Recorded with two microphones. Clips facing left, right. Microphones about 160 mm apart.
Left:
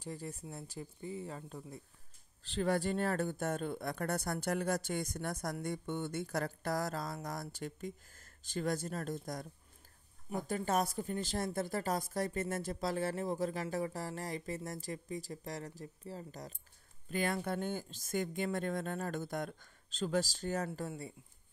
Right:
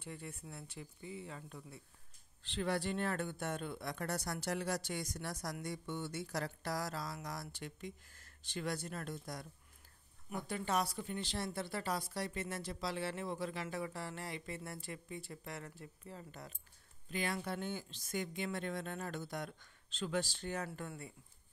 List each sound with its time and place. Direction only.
0.0 s a woman's voice: 35° left (ahead or behind)
17.1 s speech: 50° left (ahead or behind)
20.6 s a woman's voice: 30° left (ahead or behind)